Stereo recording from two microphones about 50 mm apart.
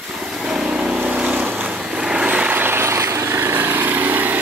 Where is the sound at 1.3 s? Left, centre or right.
Right.